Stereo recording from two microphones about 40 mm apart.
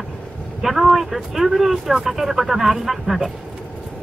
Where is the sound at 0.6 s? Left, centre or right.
Centre.